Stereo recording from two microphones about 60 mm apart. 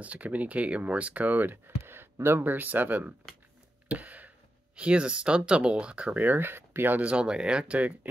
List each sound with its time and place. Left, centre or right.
0.0 s speech: right
3.9 s a sound: right
4.7 s speech: centre
6.2 s speech: right
7.0 s speech: centre